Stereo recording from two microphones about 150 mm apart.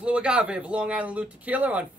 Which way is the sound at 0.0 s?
5° right (ahead or behind).